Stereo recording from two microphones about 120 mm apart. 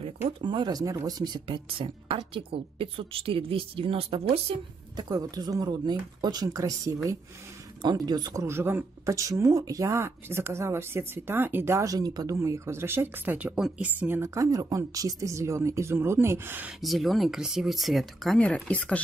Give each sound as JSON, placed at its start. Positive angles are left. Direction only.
{"t": 0.4, "sound": "speech", "side_deg": -40}
{"t": 4.9, "sound": "speech", "side_deg": -35}
{"t": 16.8, "sound": "speech", "side_deg": 0}